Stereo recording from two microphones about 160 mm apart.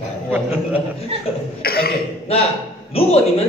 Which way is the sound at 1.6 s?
75° left (ahead or behind).